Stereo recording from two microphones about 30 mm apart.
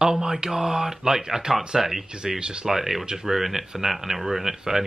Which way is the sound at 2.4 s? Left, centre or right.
Right.